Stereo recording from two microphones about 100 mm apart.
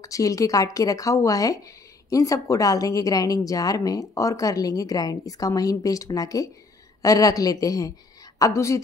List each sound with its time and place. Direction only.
0.0 s a woman's voice: 35° left (ahead or behind)